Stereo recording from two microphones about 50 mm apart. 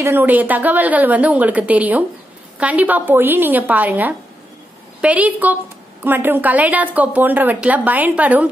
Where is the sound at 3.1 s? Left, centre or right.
Right.